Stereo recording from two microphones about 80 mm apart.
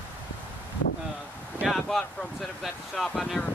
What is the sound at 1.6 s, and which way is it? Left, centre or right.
Speech, centre.